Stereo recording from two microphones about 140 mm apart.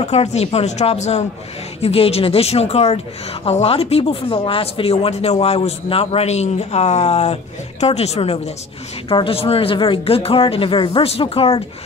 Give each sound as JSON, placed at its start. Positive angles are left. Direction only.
{"t": 0.0, "sound": "speech", "side_deg": 50}